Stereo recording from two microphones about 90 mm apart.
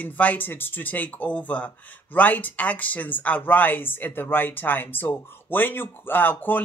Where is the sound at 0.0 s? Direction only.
20° left (ahead or behind).